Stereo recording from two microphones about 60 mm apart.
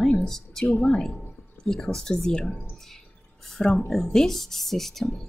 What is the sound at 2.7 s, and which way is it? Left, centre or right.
Drip, centre.